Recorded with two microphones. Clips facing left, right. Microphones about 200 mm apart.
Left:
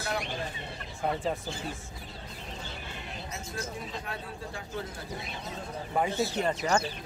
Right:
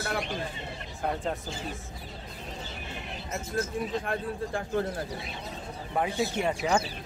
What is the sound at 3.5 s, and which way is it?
Speech, 50° right (ahead or behind).